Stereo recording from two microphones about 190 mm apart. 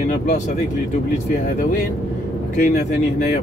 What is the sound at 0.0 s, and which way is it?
Vehicle, 40° left (ahead or behind).